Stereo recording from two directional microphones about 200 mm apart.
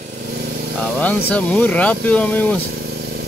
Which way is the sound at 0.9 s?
5° left (ahead or behind).